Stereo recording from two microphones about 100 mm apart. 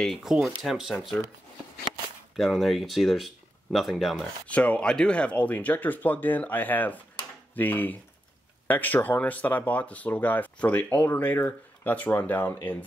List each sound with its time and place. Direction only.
0.0 s speech: centre (ahead or behind)
2.3 s speech: centre (ahead or behind)
4.5 s speech: 15° left (ahead or behind)